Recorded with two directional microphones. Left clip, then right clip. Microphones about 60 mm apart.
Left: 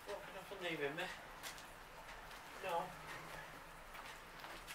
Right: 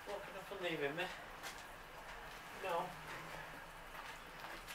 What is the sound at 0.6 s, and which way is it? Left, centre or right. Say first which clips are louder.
Speech: right 2 dB; centre.